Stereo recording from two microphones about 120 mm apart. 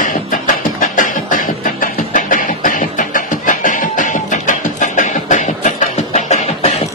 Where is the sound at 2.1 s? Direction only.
90° left.